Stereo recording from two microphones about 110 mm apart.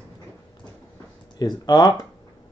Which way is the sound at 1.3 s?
35° left (ahead or behind).